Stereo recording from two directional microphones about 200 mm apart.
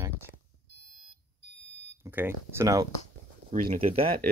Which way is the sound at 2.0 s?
10° right (ahead or behind).